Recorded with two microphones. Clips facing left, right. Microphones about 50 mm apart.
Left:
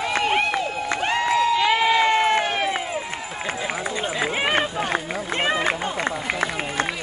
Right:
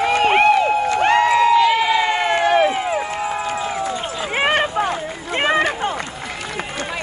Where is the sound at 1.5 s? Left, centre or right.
Centre.